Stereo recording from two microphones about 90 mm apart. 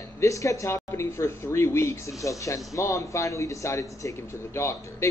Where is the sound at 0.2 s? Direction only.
35° left (ahead or behind).